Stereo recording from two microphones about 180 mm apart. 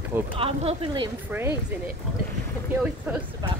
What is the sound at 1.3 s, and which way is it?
Speech, 10° right (ahead or behind).